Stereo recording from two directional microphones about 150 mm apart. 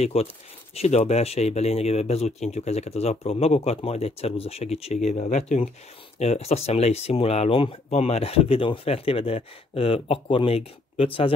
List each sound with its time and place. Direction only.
0.0 s speech: 45° left (ahead or behind)